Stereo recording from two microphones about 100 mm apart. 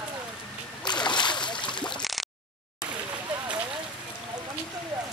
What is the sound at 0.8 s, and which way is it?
Boat, 50° left (ahead or behind).